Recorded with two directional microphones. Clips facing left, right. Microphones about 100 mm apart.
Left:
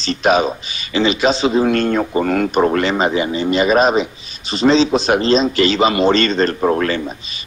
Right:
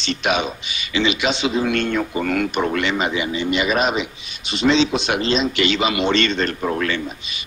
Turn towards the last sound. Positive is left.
turn(degrees=40)  # may be behind; listen again after turning